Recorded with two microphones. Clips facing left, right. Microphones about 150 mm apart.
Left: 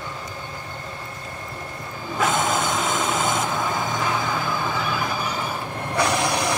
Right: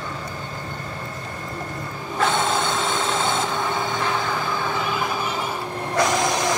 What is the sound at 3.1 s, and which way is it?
Train, 25° right (ahead or behind).